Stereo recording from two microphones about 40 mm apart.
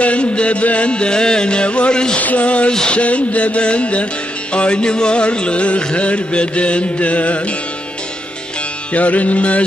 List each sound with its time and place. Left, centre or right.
0.0 s music: left
2.1 s music: left
8.9 s music: left